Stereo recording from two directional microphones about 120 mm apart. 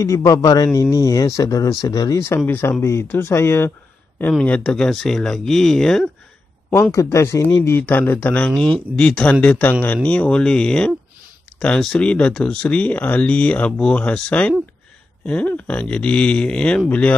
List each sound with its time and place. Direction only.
0.0 s speech: 25° left (ahead or behind)
4.3 s speech: 10° left (ahead or behind)
6.7 s speech: 25° left (ahead or behind); by 16.8 s 10° left (ahead or behind)